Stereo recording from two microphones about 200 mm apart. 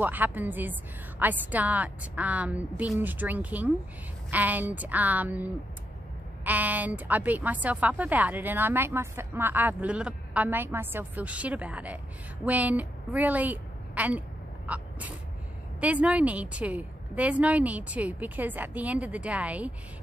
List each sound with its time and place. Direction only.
0.0 s a woman's voice: 10° right (ahead or behind)
14.7 s a sound: 10° right (ahead or behind)
15.8 s a woman's voice: 5° right (ahead or behind)